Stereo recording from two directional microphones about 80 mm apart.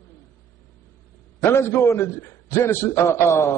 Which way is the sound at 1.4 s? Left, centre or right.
Left.